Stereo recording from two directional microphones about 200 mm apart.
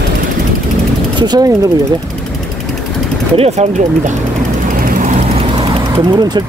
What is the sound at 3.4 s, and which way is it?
Speech, 35° right (ahead or behind).